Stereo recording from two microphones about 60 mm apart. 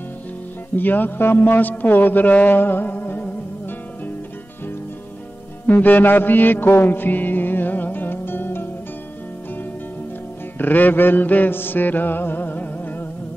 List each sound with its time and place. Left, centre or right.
0.7 s a man's voice: left
5.7 s music: left
10.6 s mantra: left